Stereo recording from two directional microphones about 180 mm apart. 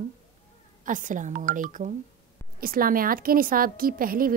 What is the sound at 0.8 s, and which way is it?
A woman's voice, 45° right (ahead or behind).